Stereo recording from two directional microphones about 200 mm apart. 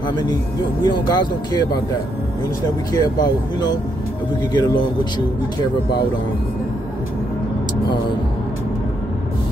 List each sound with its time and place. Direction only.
0.8 s speech: 20° left (ahead or behind)
2.9 s speech: 20° left (ahead or behind)